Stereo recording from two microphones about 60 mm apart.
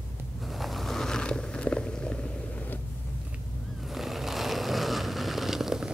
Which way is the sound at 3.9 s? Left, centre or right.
Centre.